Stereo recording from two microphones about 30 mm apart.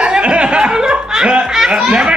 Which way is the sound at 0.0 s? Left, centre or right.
Right.